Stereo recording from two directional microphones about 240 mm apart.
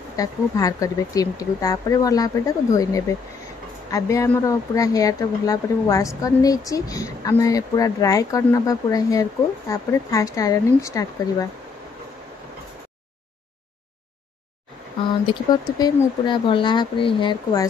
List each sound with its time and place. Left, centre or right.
0.1 s speech: centre
15.2 s speech: centre